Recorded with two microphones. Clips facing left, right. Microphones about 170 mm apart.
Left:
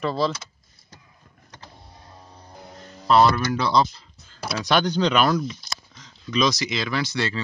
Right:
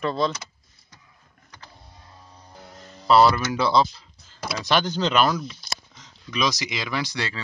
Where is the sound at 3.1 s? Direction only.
5° right (ahead or behind).